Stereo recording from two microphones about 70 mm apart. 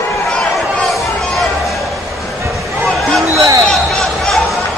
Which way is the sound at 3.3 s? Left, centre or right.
Right.